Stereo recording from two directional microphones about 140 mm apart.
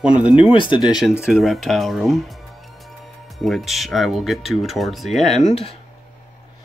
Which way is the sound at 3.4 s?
Centre (ahead or behind).